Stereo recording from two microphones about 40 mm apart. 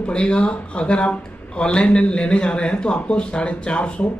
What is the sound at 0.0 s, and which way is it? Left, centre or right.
Speech, left.